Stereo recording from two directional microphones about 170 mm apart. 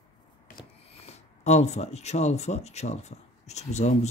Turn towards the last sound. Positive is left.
turn(degrees=40)  # may be behind; listen again after turning